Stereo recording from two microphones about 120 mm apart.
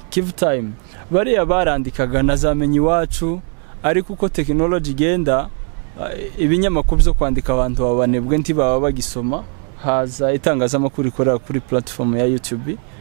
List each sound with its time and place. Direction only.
0.4 s speech: 10° right (ahead or behind)